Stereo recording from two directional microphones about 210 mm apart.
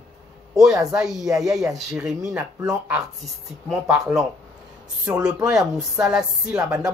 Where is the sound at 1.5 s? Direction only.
15° right (ahead or behind).